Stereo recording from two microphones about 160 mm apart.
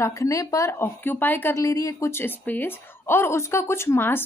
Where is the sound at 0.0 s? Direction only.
20° left (ahead or behind).